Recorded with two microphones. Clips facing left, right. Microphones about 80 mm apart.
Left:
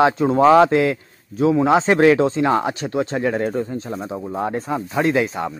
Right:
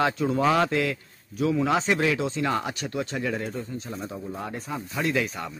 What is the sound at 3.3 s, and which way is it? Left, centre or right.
Speech, left.